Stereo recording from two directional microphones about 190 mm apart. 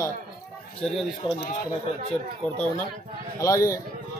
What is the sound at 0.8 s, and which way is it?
Speech, centre (ahead or behind).